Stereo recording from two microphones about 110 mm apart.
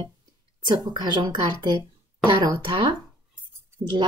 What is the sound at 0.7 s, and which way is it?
Speech, 40° right (ahead or behind).